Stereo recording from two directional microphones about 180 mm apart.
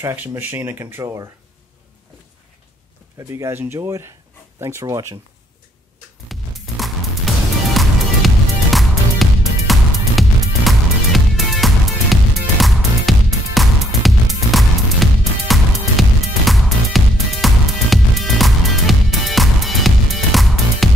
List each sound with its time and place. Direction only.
0.0 s speech: 15° right (ahead or behind)
3.2 s speech: 15° right (ahead or behind)
6.2 s music: centre (ahead or behind)